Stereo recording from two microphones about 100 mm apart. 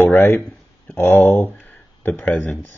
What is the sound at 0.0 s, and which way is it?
Speech, 20° left (ahead or behind).